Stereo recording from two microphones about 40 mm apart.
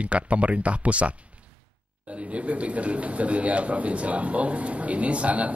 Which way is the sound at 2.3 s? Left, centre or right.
Right.